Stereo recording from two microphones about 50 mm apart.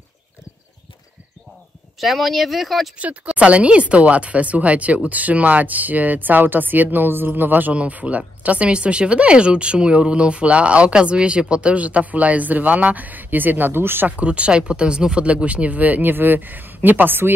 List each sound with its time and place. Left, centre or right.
2.0 s speech: centre
3.0 s speech: right
7.7 s speech: right
14.0 s speech: right